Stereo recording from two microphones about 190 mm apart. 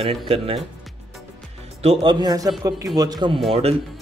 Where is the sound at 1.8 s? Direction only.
30° right (ahead or behind).